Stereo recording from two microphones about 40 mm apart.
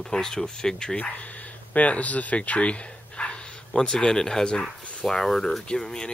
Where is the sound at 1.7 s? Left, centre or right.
Left; by 5.6 s centre.